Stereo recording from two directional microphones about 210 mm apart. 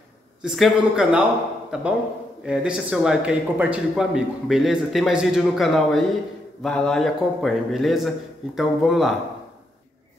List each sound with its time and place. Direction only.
0.4 s a man's voice: centre (ahead or behind)